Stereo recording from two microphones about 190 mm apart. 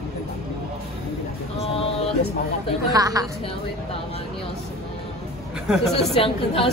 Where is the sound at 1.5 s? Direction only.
30° left (ahead or behind).